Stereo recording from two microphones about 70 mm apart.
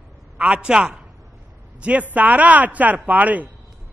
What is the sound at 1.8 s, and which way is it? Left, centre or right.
A man's voice, right.